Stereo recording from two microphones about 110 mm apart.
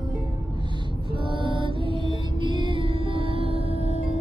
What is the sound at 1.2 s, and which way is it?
Music, 50° right (ahead or behind).